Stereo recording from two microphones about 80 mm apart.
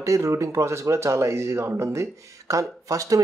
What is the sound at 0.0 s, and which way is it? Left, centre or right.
Speech, right.